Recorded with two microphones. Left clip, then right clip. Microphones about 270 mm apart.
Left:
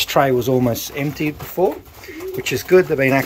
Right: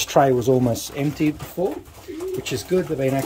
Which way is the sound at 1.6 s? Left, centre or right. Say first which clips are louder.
Left 10 dB; centre.